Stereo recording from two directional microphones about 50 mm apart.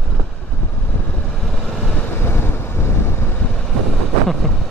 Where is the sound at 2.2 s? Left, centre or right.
Left.